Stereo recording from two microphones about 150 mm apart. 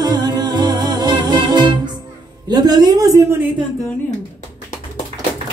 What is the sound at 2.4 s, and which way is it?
A woman's voice, 25° right (ahead or behind).